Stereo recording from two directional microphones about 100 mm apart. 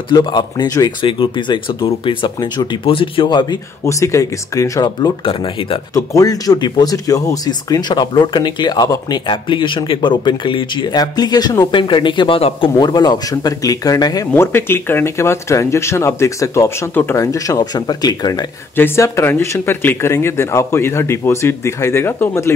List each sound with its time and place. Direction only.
0.1 s speech: 50° left (ahead or behind)
1.0 s speech: 55° left (ahead or behind)
2.8 s speech: 65° left (ahead or behind)
3.8 s speech: 30° left (ahead or behind)
5.2 s speech: 60° left (ahead or behind)
5.9 s speech: 35° left (ahead or behind)
9.2 s speech: 55° left (ahead or behind)
11.7 s speech: 55° left (ahead or behind)
12.4 s speech: 70° left (ahead or behind)
12.7 s speech: 45° left (ahead or behind)
14.3 s speech: 25° left (ahead or behind); by 18.5 s 45° left (ahead or behind)
18.8 s speech: 25° left (ahead or behind)